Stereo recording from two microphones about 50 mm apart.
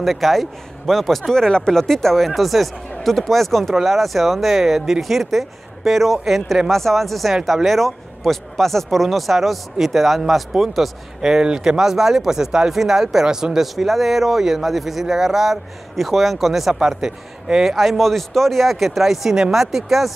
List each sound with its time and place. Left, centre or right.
0.0 s speech: centre
17.7 s speech: centre